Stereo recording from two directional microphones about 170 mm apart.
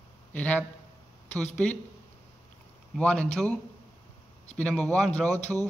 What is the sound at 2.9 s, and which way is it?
Speech, 5° left (ahead or behind).